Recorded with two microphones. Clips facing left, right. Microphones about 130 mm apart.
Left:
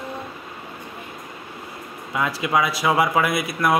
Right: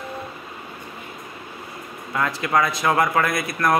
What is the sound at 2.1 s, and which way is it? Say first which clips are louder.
Speech: even; 10° left (ahead or behind).